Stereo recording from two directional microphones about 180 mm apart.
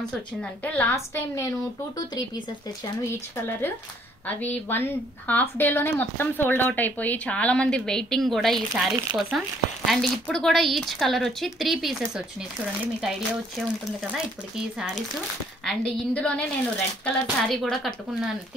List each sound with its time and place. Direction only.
0.0 s speech: 10° left (ahead or behind)
4.3 s speech: 10° left (ahead or behind); by 13.4 s 5° right (ahead or behind)
15.6 s speech: 5° left (ahead or behind)